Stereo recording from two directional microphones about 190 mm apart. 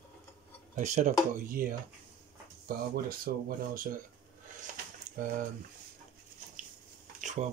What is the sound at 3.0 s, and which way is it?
Speech, 45° right (ahead or behind).